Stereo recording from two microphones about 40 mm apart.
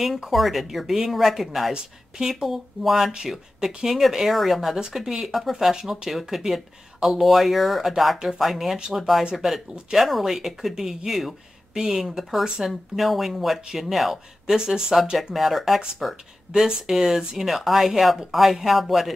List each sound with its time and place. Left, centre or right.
0.0 s speech: centre
11.7 s speech: centre
14.5 s speech: centre
15.3 s speech: centre
17.4 s speech: centre